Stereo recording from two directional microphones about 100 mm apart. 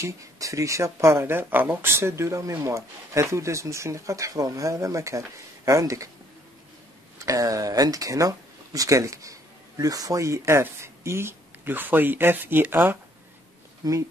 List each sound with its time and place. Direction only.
0.0 s speech: 30° right (ahead or behind)
7.2 s speech: 35° right (ahead or behind); by 12.7 s 20° right (ahead or behind)